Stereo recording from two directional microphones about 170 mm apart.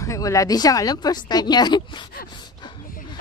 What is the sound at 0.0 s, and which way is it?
Speech, 20° left (ahead or behind).